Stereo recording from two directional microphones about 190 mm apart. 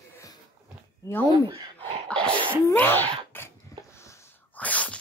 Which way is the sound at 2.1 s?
5° left (ahead or behind).